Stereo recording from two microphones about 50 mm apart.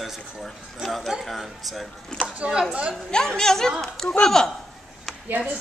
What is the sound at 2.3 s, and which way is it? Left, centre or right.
Speech, right.